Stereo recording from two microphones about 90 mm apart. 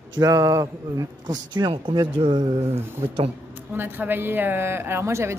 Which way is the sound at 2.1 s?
75° right (ahead or behind).